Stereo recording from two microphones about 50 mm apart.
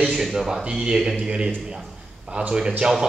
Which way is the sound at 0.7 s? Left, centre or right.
Centre.